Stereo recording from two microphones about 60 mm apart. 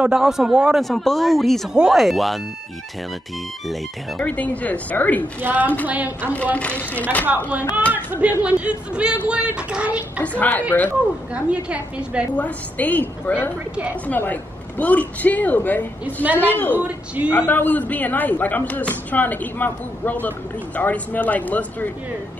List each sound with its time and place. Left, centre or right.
0.1 s speech: centre
0.7 s speech: centre
1.7 s speech: centre
4.2 s speech: left
5.4 s speech: right
6.3 s speech: left
7.2 s speech: right
10.2 s speech: left
11.3 s speech: centre
12.4 s a woman's voice: left
16.7 s speech: right
17.3 s speech: left